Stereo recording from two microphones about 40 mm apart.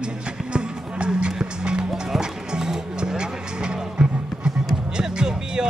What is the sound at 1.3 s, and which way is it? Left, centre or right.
Music, right.